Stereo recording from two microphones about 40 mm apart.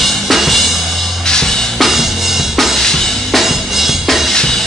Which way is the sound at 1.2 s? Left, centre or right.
Centre.